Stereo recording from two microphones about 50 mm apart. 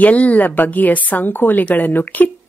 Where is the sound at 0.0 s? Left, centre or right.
Left.